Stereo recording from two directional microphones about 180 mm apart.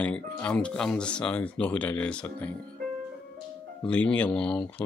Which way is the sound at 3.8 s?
5° left (ahead or behind).